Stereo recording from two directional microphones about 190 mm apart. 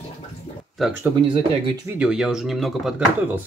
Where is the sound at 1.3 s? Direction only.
30° right (ahead or behind).